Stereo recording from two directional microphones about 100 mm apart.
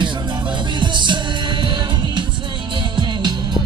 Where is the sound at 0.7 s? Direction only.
50° right (ahead or behind).